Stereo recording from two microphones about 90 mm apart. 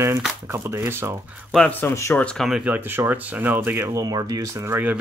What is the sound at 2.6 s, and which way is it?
Speech, 20° right (ahead or behind).